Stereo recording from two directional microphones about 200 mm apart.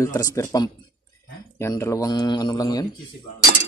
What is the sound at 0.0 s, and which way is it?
Speech, 15° left (ahead or behind).